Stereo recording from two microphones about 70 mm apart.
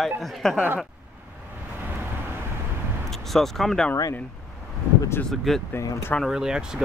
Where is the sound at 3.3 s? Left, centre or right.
Centre.